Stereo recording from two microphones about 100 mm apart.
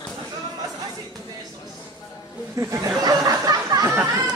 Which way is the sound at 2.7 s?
35° right (ahead or behind).